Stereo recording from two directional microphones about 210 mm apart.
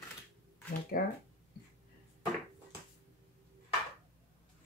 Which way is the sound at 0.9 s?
40° left (ahead or behind).